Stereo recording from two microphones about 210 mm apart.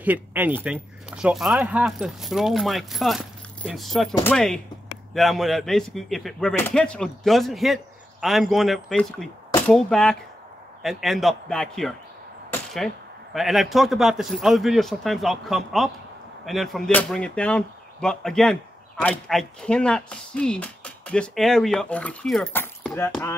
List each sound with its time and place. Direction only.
0.0 s speech: 10° right (ahead or behind); by 23.3 s 10° left (ahead or behind)